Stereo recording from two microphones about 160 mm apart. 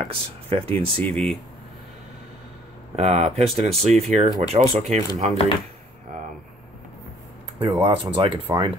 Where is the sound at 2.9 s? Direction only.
45° right (ahead or behind).